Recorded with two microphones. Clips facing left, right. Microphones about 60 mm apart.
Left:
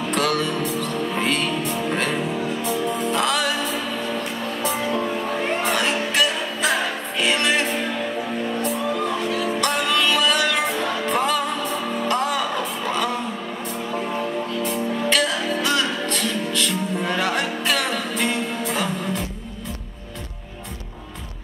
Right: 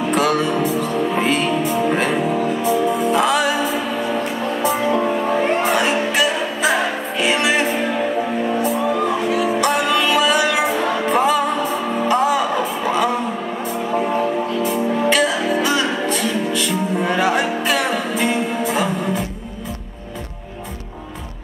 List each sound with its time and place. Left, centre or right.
0.0 s music: centre
7.9 s music: centre
8.5 s music: centre
14.5 s music: centre